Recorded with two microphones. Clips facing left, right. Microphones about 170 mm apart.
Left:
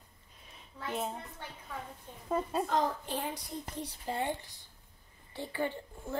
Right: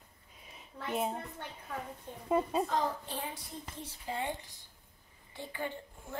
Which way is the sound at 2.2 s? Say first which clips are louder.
Right 2 dB; 5° right (ahead or behind).